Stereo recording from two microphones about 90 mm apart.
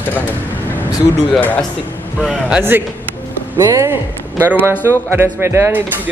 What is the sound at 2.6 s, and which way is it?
Speech, 25° right (ahead or behind).